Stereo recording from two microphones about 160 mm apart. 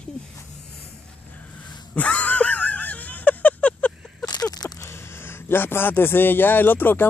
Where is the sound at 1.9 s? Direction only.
10° left (ahead or behind).